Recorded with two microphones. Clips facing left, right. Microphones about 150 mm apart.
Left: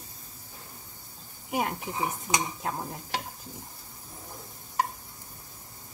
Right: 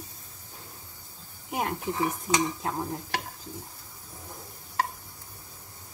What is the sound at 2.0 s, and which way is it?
Cutlery, 15° left (ahead or behind).